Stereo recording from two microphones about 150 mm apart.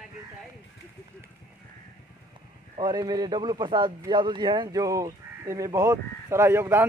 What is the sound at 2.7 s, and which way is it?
A man's voice, 30° right (ahead or behind).